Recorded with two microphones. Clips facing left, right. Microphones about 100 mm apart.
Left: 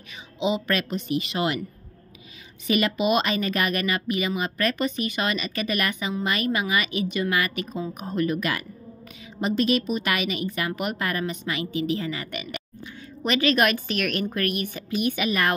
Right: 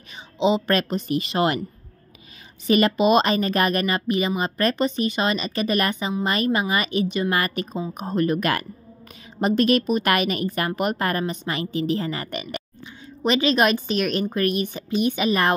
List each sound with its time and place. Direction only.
0.4 s a woman's voice: 30° right (ahead or behind)
2.6 s a woman's voice: 35° right (ahead or behind)
13.2 s a woman's voice: 25° right (ahead or behind)